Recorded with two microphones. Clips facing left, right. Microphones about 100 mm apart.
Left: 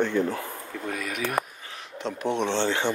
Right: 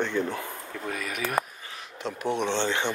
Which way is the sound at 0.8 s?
Centre (ahead or behind).